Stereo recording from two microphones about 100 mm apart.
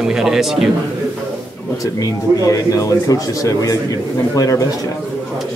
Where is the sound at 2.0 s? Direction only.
35° left (ahead or behind).